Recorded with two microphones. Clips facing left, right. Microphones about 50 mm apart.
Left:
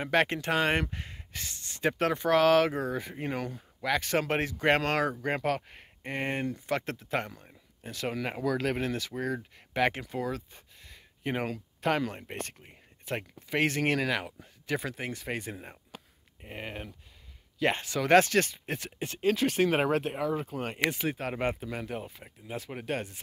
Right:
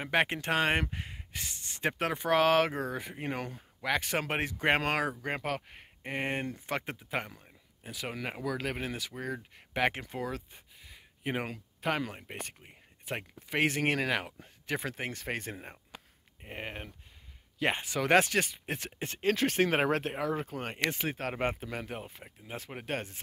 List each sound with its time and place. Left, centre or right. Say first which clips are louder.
0.1 s speech: left 2 dB; right
5.4 s speech: left 5 dB; centre
6.2 s speech: left 3 dB; right
6.8 s speech: left 3 dB; centre
9.2 s speech: left 5 dB; right
10.8 s a sound: left 4 dB; centre
13.1 s speech: left 3 dB; right
15.5 s speech: left 1 dB; right
18.8 s speech: left 3 dB; right
20.9 s speech: left 2 dB; right